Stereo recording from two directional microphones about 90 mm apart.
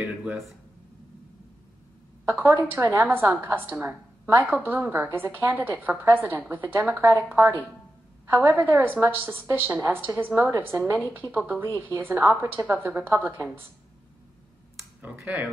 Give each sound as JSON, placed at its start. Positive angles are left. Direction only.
{"t": 0.0, "sound": "speech", "side_deg": -5}
{"t": 2.2, "sound": "a woman's voice", "side_deg": -20}
{"t": 8.3, "sound": "a woman's voice", "side_deg": -20}
{"t": 15.2, "sound": "speech", "side_deg": -15}